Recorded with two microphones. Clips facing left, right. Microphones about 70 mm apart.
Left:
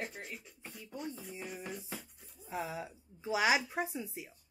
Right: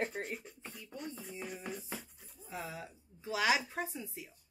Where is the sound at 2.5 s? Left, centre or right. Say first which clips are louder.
Left 4 dB; centre.